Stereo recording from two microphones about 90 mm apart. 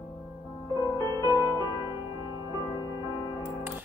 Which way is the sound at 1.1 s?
45° right (ahead or behind).